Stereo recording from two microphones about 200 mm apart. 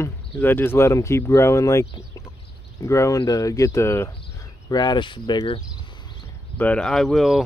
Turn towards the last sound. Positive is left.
turn(degrees=0)  # may be behind; listen again after turning